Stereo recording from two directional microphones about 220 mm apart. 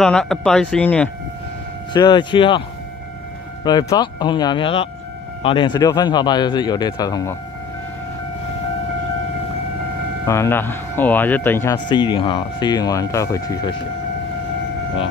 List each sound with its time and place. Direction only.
0.0 s speech: centre (ahead or behind)
2.0 s speech: 20° left (ahead or behind)
3.6 s speech: 20° left (ahead or behind)
10.2 s speech: 15° left (ahead or behind)